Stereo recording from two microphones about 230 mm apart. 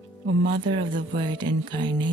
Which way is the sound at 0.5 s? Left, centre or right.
Right.